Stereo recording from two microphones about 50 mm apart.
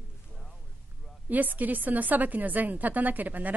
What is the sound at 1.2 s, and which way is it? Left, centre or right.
A woman's voice, right.